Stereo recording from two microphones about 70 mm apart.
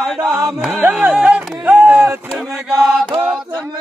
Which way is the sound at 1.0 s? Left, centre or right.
Centre.